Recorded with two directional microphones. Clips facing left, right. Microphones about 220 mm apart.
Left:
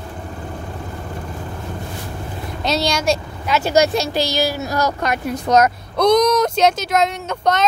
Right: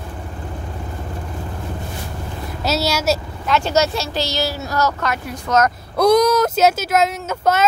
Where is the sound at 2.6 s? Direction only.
5° right (ahead or behind); by 5.7 s 15° left (ahead or behind).